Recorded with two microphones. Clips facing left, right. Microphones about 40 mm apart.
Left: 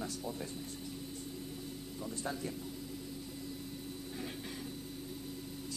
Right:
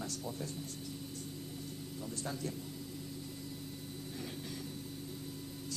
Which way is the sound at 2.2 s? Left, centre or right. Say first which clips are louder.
Left 1 dB; centre.